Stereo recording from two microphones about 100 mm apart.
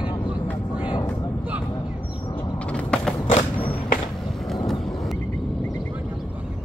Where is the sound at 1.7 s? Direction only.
55° left (ahead or behind).